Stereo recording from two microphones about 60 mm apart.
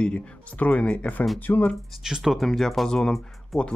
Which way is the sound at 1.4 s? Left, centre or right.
Left.